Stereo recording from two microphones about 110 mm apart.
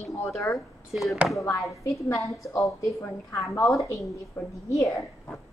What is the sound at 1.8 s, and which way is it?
A woman's voice, 30° left (ahead or behind).